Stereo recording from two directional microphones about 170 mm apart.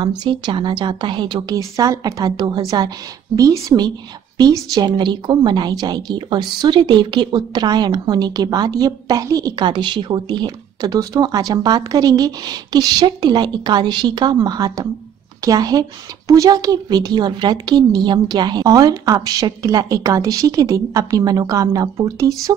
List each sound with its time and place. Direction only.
0.2 s speech: 30° right (ahead or behind)